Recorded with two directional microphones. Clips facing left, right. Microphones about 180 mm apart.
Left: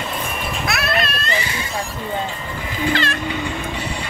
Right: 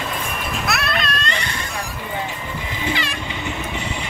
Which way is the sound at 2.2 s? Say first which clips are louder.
Left 1 dB; 20° right (ahead or behind).